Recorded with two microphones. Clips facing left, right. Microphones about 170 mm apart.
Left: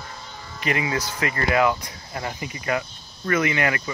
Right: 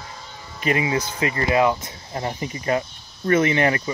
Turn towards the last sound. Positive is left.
turn(degrees=-30)  # may be behind; listen again after turning